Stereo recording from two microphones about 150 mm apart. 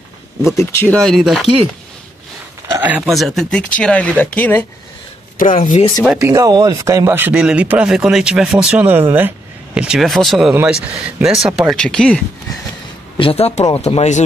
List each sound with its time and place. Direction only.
0.6 s speech: 15° left (ahead or behind); by 1.5 s centre (ahead or behind)
2.8 s speech: 10° right (ahead or behind)
3.1 s speech: centre (ahead or behind)
5.6 s speech: 45° left (ahead or behind)
6.2 s speech: 25° right (ahead or behind)
9.8 s speech: 5° right (ahead or behind)
10.5 s speech: 15° right (ahead or behind)
11.2 s speech: 5° right (ahead or behind)
13.2 s speech: 40° left (ahead or behind)